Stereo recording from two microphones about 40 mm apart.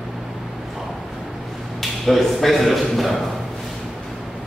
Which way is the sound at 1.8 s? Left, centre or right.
Centre.